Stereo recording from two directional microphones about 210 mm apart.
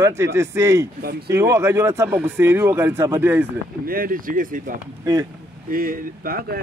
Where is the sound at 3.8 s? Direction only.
45° right (ahead or behind).